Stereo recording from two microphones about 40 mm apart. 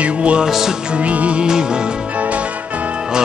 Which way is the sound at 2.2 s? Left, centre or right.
Right.